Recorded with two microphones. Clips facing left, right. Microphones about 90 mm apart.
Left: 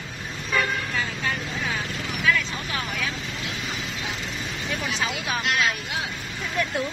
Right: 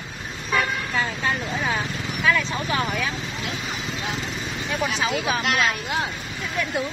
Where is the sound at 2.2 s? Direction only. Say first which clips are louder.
Right 3 dB; 35° right (ahead or behind).